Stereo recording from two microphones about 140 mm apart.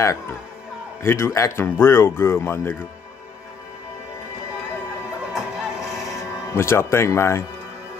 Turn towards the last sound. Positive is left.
turn(degrees=20)  # may be behind; listen again after turning